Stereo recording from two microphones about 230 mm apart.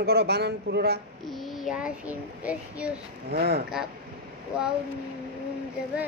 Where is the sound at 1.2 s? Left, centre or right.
Centre.